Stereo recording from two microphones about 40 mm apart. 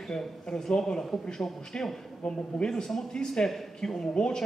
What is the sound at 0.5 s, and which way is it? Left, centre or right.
Speech, centre.